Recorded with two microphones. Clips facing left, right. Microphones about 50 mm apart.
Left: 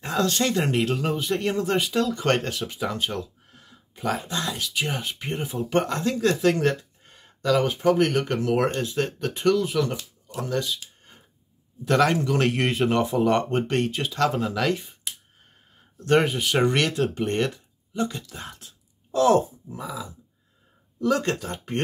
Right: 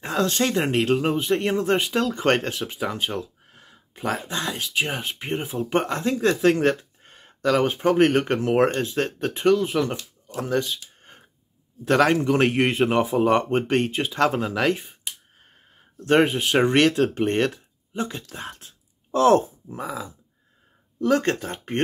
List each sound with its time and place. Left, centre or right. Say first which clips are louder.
0.0 s speech: right 1 dB; centre; by 11.2 s right
11.9 s speech: right 2 dB; right
16.1 s speech: right 2 dB; right